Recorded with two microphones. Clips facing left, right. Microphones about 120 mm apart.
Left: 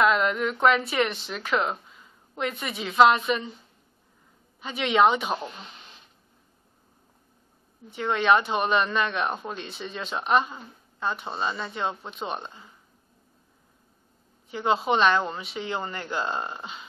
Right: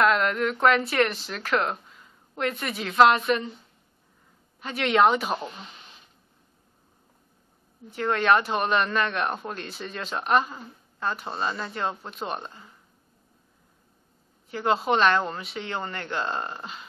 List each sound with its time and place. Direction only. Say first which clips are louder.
0.0 s speech: even; 5° left (ahead or behind)
4.6 s speech: even; centre (ahead or behind)
7.9 s speech: even; centre (ahead or behind)
14.5 s speech: even; centre (ahead or behind)